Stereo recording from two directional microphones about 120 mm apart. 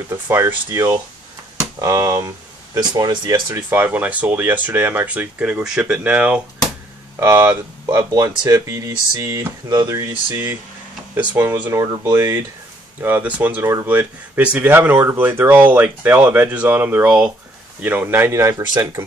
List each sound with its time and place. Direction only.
0.1 s speech: 20° right (ahead or behind); by 3.5 s 40° right (ahead or behind)
3.5 s speech: 15° right (ahead or behind)
8.1 s speech: 30° right (ahead or behind); by 11.6 s 15° right (ahead or behind)
11.7 s speech: 25° right (ahead or behind)